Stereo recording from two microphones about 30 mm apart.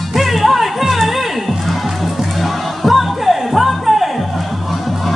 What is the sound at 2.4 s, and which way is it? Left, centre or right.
Music, centre.